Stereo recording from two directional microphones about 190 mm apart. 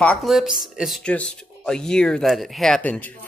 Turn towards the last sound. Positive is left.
turn(degrees=10)  # may be behind; listen again after turning